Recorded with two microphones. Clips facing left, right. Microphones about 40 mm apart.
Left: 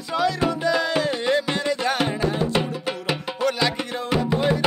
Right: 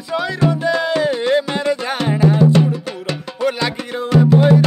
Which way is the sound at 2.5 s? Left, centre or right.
Centre.